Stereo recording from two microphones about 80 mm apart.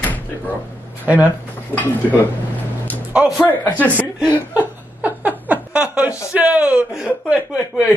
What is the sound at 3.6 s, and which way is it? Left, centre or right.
Speech, centre.